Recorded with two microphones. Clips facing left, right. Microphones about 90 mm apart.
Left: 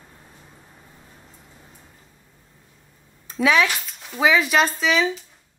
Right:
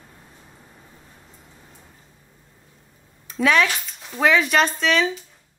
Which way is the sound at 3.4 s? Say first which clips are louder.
Even; centre (ahead or behind).